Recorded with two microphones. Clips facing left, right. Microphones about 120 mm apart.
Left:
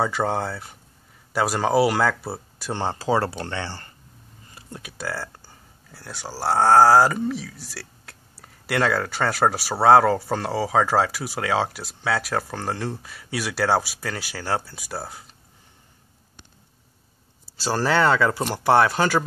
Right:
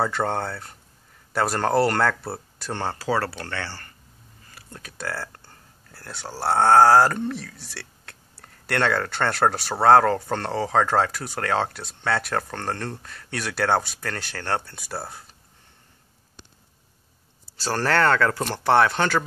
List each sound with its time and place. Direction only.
0.0 s speech: 5° left (ahead or behind)
2.7 s speech: 20° left (ahead or behind)
4.5 s a sound: 20° left (ahead or behind)
4.8 s speech: 5° left (ahead or behind)
17.6 s speech: 5° left (ahead or behind)